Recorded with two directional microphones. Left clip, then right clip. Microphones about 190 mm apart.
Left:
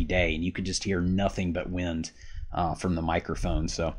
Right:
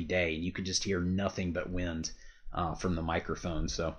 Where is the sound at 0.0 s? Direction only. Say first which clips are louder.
Left 4 dB; 35° left (ahead or behind).